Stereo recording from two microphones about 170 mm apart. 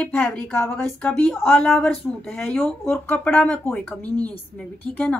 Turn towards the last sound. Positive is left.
turn(degrees=10)  # may be behind; listen again after turning